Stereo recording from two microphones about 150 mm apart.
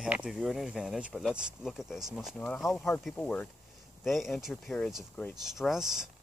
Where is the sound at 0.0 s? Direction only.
5° right (ahead or behind).